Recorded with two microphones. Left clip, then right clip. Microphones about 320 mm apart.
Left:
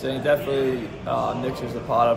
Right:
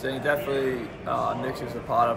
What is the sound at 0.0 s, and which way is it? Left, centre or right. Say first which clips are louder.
A man's voice: left 4 dB; centre.